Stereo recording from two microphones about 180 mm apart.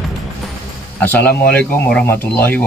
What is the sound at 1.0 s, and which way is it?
Speech, 10° left (ahead or behind).